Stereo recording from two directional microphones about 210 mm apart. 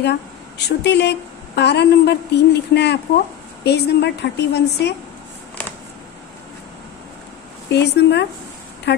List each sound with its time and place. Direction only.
0.0 s a woman's voice: 55° left (ahead or behind)
7.7 s a woman's voice: 55° left (ahead or behind)